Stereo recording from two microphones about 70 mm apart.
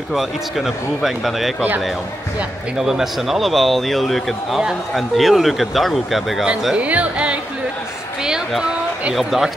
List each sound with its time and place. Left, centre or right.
0.1 s a man's voice: centre
2.8 s a man's voice: centre
6.7 s speech: centre
8.2 s a sound: centre
9.1 s a man's voice: centre